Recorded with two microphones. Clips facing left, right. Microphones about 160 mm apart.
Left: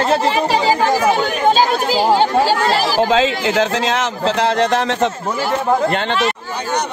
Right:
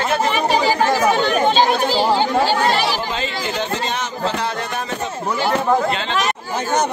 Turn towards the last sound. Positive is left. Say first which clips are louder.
# left 9 dB
turn(degrees=90)